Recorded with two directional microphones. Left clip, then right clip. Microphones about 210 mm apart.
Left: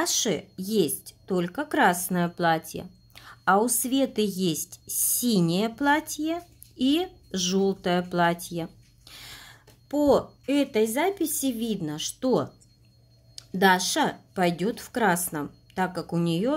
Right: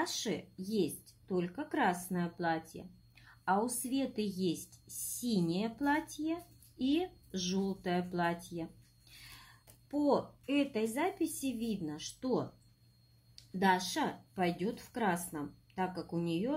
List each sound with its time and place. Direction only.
0.0 s speech: 40° left (ahead or behind)
13.6 s a woman's voice: 40° left (ahead or behind)